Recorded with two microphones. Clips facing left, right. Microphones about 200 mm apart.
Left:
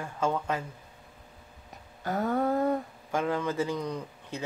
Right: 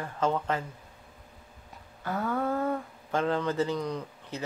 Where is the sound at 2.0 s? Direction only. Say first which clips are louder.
Left 2 dB; 40° left (ahead or behind).